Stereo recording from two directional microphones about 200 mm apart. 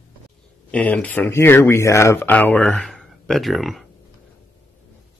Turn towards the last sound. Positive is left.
turn(degrees=0)  # may be behind; listen again after turning